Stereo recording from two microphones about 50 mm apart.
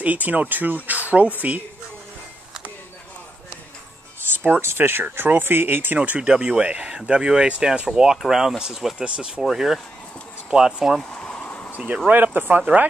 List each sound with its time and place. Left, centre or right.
0.0 s speech: right
4.3 s speech: right
5.9 s speech: right
11.1 s a sound: left
11.4 s a sound: left
12.4 s speech: right